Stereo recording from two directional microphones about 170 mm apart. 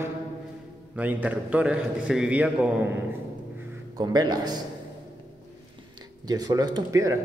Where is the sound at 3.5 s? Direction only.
25° right (ahead or behind).